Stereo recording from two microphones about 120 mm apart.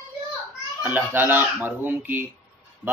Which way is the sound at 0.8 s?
15° right (ahead or behind).